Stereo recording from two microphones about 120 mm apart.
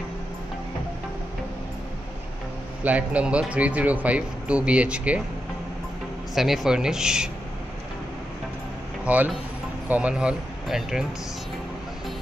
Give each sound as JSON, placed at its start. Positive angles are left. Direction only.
{"t": 2.8, "sound": "speech", "side_deg": -10}
{"t": 6.3, "sound": "speech", "side_deg": -5}
{"t": 9.0, "sound": "speech", "side_deg": -10}